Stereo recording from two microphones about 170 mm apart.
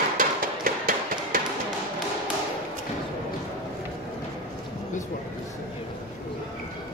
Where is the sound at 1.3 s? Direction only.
55° right (ahead or behind).